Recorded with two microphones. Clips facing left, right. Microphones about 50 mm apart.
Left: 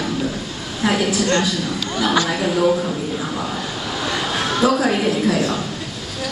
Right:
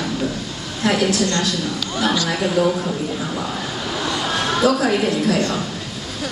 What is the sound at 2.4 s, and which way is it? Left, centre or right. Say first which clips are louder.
Speech: left 1 dB; centre.